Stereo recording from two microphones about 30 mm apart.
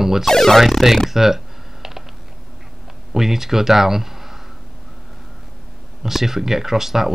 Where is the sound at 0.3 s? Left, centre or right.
Centre.